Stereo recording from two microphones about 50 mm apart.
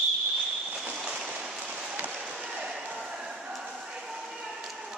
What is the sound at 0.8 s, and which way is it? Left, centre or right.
Vehicle, centre.